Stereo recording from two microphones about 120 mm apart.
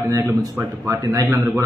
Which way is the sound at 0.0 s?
25° right (ahead or behind).